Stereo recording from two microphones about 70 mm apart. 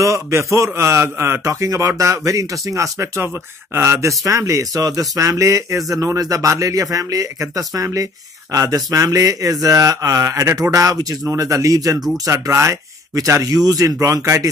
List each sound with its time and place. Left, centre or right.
0.0 s speech: right
4.2 s speech: right
12.3 s speech: right